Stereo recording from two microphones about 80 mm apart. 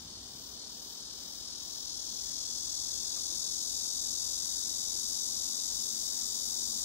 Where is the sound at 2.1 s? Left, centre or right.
Left.